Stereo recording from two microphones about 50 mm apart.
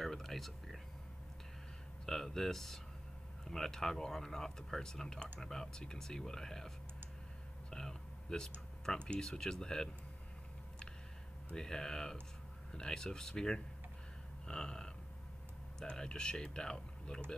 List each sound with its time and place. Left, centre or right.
0.0 s a sound: centre
2.0 s speech: centre
7.7 s speech: centre
11.5 s speech: centre
14.4 s a sound: centre
15.8 s speech: centre